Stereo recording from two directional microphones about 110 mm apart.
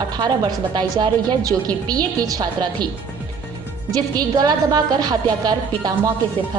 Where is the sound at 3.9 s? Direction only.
35° right (ahead or behind).